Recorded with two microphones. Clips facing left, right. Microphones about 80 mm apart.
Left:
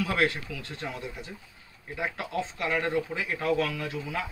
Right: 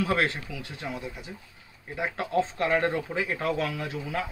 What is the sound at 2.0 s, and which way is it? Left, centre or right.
Speech, right.